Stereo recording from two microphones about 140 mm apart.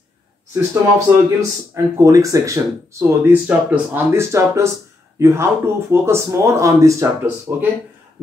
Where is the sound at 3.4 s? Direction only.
10° right (ahead or behind).